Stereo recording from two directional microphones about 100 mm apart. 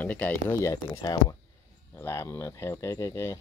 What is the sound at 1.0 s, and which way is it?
Speech, 40° left (ahead or behind).